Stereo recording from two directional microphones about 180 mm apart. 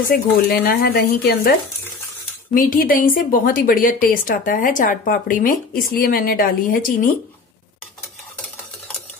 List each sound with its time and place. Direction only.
0.1 s speech: 55° left (ahead or behind)
2.5 s a woman's voice: 50° left (ahead or behind)